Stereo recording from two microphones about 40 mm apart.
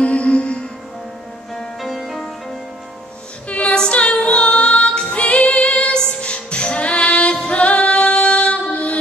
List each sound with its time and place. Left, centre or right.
0.0 s music: left
1.8 s music: centre
3.4 s music: left